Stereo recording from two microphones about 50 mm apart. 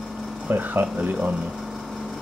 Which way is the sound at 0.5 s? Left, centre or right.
Right.